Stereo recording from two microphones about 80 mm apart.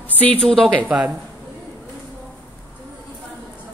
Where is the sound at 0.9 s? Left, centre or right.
Centre.